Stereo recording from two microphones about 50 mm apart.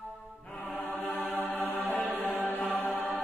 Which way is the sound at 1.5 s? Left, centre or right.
Left.